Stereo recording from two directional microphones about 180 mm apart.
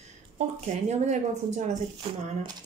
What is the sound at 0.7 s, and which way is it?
A woman's voice, 40° right (ahead or behind).